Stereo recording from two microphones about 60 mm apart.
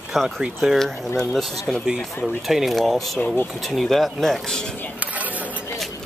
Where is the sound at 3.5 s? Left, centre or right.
Centre.